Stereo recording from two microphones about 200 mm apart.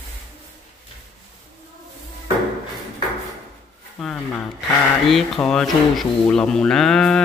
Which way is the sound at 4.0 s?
Centre (ahead or behind).